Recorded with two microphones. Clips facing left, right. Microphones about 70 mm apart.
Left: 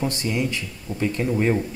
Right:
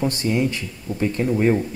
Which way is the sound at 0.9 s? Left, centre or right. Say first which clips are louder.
Right 2 dB; left.